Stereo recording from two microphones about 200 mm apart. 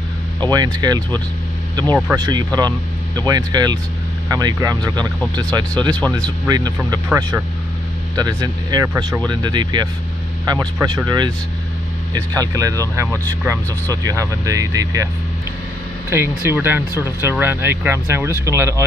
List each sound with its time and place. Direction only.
0.4 s speech: 20° right (ahead or behind)
2.2 s speech: 20° right (ahead or behind)
5.9 s speech: 5° left (ahead or behind)
6.4 s speech: 20° right (ahead or behind)
7.1 s speech: 10° right (ahead or behind)
8.2 s speech: 20° right (ahead or behind)
9.3 s speech: 20° right (ahead or behind)
16.1 s speech: 10° right (ahead or behind)